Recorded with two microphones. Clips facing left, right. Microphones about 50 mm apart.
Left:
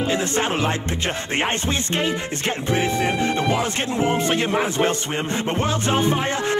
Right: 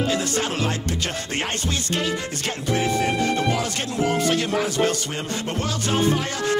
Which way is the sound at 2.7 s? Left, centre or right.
Left.